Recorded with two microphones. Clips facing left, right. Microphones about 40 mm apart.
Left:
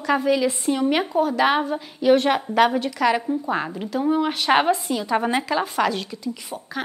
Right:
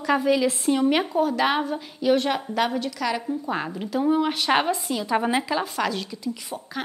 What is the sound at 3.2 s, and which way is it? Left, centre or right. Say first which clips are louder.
A woman's voice: left 3 dB; centre.